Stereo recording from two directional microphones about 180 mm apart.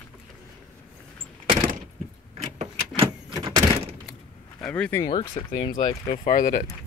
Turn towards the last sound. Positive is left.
turn(degrees=45)  # may be behind; listen again after turning